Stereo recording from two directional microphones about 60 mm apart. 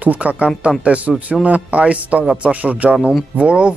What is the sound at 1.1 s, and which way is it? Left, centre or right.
Speech, centre.